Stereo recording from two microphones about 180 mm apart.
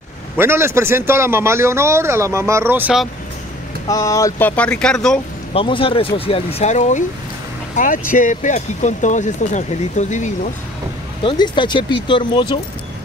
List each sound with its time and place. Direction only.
0.4 s a man's voice: 15° right (ahead or behind)
3.9 s speech: 20° left (ahead or behind)
5.5 s speech: 30° left (ahead or behind)
11.2 s speech: 25° left (ahead or behind)